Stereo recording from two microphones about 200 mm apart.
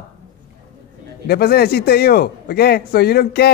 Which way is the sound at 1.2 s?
50° left (ahead or behind).